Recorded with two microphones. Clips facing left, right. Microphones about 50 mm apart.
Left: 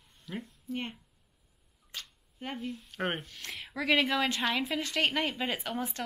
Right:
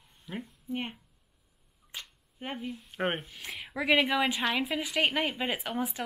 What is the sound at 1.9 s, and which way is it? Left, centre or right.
Finger snapping, centre.